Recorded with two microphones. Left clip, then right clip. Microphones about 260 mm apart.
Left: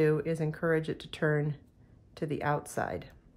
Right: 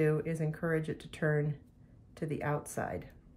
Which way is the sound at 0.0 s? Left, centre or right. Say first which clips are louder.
Left 4 dB; centre.